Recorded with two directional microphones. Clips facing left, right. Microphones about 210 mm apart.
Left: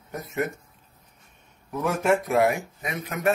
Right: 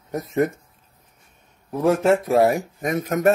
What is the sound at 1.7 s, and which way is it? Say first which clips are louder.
Speech: right 5 dB; 30° right (ahead or behind).